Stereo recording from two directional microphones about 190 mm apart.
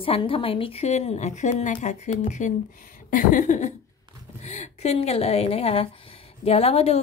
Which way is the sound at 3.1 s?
45° left (ahead or behind).